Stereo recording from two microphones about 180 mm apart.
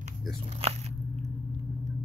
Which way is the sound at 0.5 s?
35° right (ahead or behind).